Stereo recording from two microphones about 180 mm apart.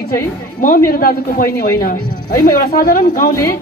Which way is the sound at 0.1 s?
50° left (ahead or behind).